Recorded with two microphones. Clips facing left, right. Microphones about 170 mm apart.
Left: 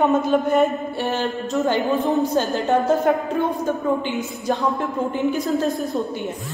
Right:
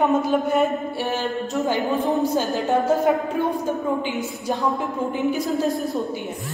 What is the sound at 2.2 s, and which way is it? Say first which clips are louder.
Speech: left 1 dB; centre (ahead or behind).